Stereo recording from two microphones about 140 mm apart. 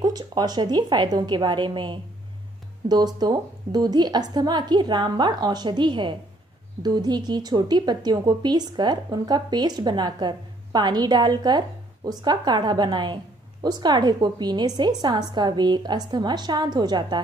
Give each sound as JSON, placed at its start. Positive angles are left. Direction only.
{"t": 0.0, "sound": "a woman's voice", "side_deg": -30}